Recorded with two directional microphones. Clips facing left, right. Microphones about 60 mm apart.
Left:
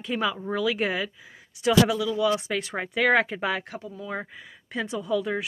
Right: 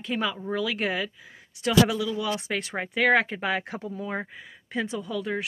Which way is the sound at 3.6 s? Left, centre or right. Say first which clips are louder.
Right 3 dB; right.